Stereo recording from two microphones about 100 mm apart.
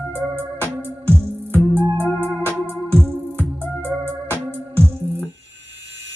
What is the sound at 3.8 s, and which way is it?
Music, 20° right (ahead or behind).